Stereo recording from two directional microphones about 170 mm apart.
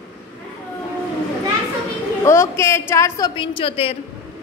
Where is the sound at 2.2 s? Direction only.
15° left (ahead or behind); by 3.9 s 35° left (ahead or behind).